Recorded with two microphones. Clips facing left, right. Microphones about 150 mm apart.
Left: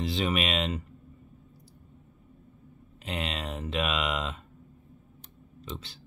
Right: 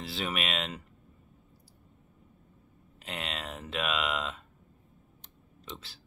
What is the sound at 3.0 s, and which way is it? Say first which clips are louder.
Speech: left 4 dB; centre (ahead or behind).